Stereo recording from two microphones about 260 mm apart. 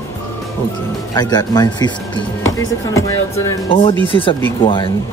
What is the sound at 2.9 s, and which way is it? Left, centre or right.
Speech, centre.